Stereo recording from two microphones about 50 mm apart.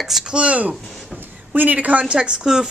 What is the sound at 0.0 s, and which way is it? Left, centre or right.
Speech, centre.